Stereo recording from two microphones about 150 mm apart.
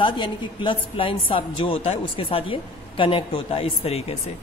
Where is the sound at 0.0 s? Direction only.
30° left (ahead or behind).